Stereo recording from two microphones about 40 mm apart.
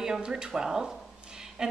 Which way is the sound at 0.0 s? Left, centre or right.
Centre.